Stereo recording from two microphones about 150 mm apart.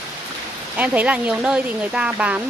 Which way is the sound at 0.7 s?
10° right (ahead or behind).